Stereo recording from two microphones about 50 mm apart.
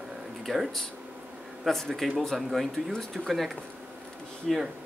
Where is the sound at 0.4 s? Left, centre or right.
Centre.